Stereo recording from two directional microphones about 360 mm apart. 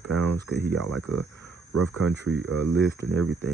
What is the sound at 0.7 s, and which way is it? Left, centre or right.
Speech, right.